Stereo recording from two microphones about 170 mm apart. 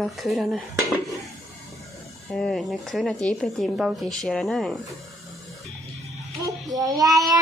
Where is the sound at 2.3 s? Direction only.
5° left (ahead or behind).